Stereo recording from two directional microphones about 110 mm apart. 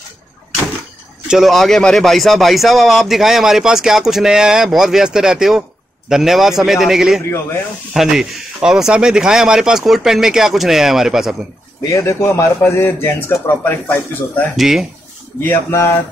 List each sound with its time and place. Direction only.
1.2 s speech: 5° right (ahead or behind)
11.9 s a man's voice: 25° left (ahead or behind)
14.6 s speech: 5° right (ahead or behind)
15.4 s a man's voice: 20° left (ahead or behind)